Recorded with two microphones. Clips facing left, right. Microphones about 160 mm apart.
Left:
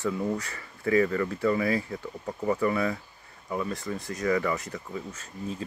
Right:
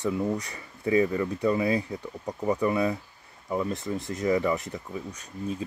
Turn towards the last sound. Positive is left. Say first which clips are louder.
# even
turn(degrees=-15)  # may be behind; listen again after turning